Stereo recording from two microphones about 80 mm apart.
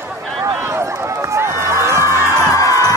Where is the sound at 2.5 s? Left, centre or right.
Left.